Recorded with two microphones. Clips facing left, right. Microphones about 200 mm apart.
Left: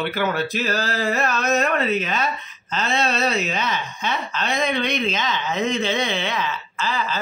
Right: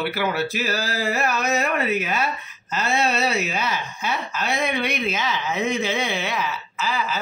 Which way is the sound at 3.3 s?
Centre (ahead or behind).